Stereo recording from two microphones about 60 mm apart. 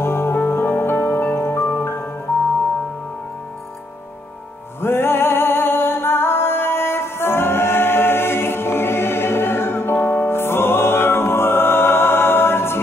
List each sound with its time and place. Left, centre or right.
0.0 s music: left
4.8 s music: left